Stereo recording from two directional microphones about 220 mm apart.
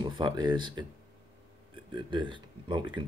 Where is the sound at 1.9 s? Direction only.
20° right (ahead or behind).